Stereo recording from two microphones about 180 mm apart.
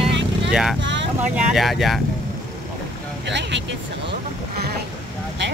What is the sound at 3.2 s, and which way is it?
Speech, 75° right (ahead or behind).